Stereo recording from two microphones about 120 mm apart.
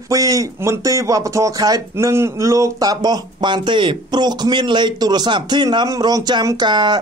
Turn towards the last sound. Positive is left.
turn(degrees=-40)  # may be behind; listen again after turning